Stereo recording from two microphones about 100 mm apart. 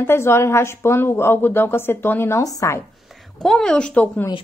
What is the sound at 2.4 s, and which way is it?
Speech, 35° left (ahead or behind).